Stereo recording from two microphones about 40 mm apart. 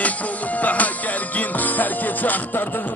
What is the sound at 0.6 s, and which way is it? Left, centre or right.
Music, left.